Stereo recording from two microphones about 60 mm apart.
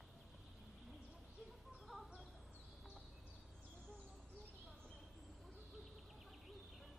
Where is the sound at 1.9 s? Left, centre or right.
Centre.